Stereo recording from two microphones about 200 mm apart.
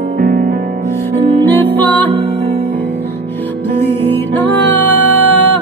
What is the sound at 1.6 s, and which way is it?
Music, 10° left (ahead or behind).